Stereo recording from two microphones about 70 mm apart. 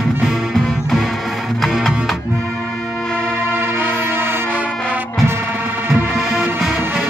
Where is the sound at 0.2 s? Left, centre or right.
Centre.